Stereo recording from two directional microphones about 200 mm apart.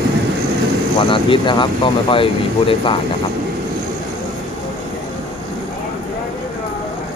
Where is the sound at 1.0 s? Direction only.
25° left (ahead or behind).